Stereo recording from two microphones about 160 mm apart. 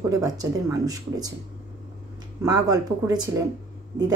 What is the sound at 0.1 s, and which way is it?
Speech, 20° right (ahead or behind).